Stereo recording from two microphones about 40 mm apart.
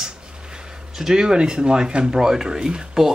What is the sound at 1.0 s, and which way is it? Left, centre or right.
Speech, centre.